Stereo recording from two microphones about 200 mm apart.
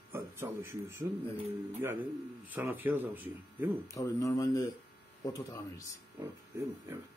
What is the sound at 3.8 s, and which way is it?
Speech, 15° left (ahead or behind).